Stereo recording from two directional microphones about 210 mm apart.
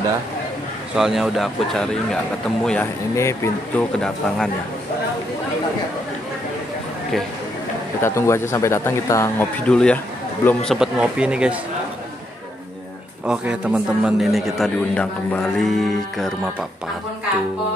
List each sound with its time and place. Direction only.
0.9 s a man's voice: centre (ahead or behind)
8.0 s a man's voice: 15° left (ahead or behind); by 11.5 s 5° right (ahead or behind)
13.3 s a man's voice: 5° right (ahead or behind)